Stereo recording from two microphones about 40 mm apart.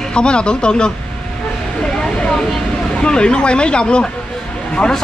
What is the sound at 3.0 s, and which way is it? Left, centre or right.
Speech, left.